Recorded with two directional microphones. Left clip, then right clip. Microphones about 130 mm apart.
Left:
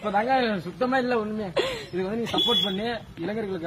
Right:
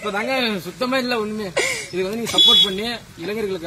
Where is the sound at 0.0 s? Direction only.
25° left (ahead or behind).